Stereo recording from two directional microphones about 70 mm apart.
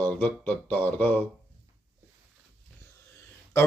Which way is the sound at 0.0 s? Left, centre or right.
Left.